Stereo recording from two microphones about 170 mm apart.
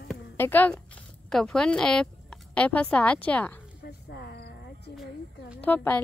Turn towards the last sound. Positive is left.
turn(degrees=10)  # may be behind; listen again after turning